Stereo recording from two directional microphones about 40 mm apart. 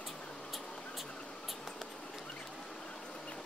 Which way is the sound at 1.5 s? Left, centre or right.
Centre.